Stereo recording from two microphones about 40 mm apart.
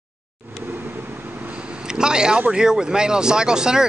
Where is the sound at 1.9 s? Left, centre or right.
Centre.